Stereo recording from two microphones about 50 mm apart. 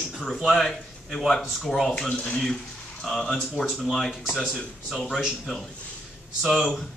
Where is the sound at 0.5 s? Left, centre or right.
Centre.